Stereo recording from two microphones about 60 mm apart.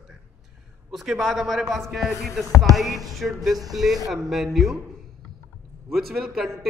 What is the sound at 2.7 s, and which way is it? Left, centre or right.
A man's voice, centre.